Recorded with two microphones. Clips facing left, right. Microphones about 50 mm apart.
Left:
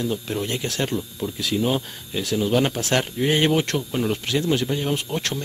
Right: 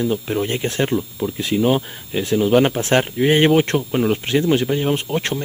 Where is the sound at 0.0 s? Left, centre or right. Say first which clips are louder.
Right 5 dB; right.